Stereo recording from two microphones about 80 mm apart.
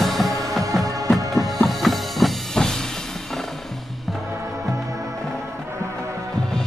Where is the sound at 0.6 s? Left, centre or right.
Right.